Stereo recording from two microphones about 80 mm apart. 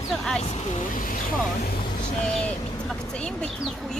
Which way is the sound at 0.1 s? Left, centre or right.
Centre.